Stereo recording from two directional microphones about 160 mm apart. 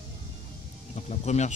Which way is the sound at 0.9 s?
45° left (ahead or behind).